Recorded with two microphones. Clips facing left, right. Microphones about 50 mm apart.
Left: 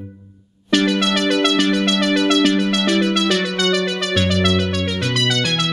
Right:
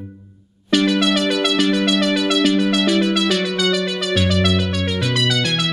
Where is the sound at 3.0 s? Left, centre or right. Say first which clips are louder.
Even; centre.